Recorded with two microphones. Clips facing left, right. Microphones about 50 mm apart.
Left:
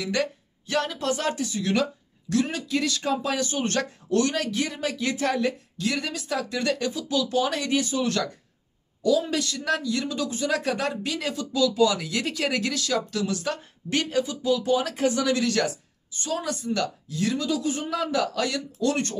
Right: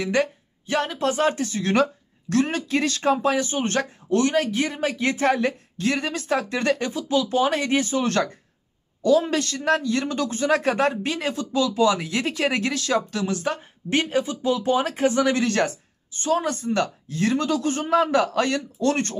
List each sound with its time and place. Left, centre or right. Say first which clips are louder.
0.0 s a man's voice: right 4 dB; right